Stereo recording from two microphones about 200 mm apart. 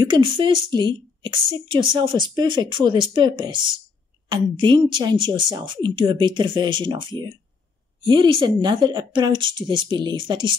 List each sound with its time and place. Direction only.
0.0 s a woman's voice: 25° right (ahead or behind)